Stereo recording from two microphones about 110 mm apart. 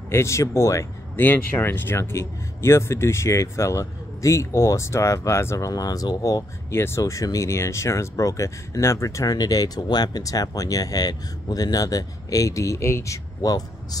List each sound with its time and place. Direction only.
0.1 s speech: 25° left (ahead or behind)
6.7 s speech: 20° left (ahead or behind)